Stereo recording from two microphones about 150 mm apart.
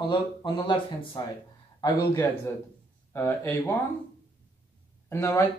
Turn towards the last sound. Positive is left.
turn(degrees=15)  # may be behind; listen again after turning